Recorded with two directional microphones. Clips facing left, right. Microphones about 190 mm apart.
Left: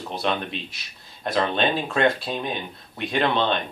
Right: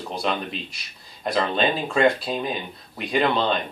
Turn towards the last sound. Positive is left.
turn(degrees=0)  # may be behind; listen again after turning